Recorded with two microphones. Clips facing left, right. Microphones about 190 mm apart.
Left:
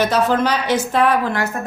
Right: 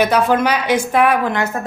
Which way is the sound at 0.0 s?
10° right (ahead or behind).